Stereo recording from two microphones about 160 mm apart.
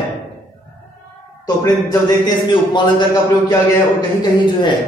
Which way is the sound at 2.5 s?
30° left (ahead or behind).